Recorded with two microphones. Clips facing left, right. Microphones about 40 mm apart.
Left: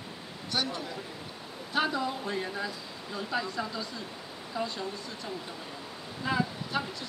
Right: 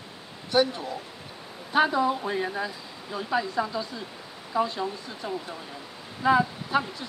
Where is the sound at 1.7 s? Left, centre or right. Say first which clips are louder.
Right 7 dB; centre.